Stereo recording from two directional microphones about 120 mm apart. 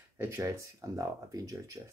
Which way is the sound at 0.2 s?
20° right (ahead or behind).